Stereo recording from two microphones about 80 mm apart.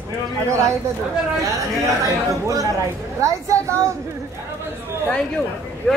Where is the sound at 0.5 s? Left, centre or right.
Right.